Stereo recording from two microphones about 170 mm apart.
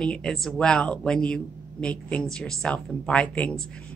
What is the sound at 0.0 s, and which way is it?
Speech, 5° left (ahead or behind).